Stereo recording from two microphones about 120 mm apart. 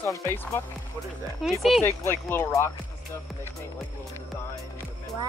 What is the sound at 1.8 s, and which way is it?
Speech, 20° left (ahead or behind).